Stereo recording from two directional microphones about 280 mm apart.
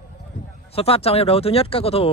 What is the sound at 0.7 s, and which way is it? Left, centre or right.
Speech, left.